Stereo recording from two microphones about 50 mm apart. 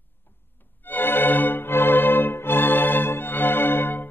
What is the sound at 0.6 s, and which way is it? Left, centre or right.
Music, left.